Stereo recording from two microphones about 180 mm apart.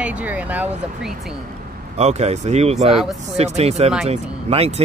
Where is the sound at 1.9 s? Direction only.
35° right (ahead or behind).